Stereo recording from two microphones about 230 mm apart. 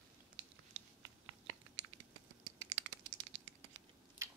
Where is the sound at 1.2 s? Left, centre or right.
Right.